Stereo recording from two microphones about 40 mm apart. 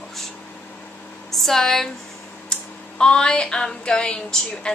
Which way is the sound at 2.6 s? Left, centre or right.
Left.